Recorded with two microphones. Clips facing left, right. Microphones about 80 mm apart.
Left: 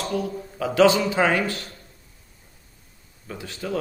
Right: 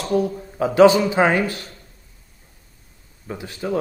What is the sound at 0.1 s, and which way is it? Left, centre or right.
A man's voice, right.